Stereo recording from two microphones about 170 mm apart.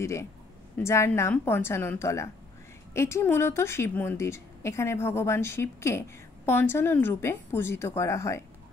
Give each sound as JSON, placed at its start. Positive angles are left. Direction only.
{"t": 0.0, "sound": "a woman's voice", "side_deg": 15}